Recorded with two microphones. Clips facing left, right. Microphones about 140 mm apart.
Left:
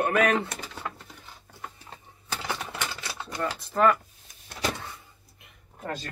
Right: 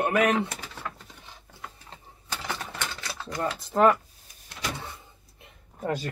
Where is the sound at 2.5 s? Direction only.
10° left (ahead or behind).